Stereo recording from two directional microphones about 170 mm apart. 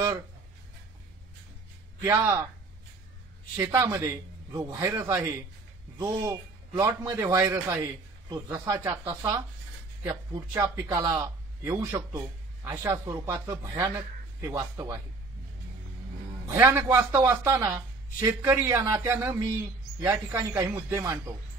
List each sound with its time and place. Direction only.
2.0 s a man's voice: 15° right (ahead or behind)
3.5 s a man's voice: 15° right (ahead or behind)
16.5 s a man's voice: 15° right (ahead or behind)